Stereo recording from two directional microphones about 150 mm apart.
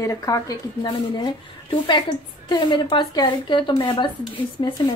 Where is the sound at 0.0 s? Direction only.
20° left (ahead or behind).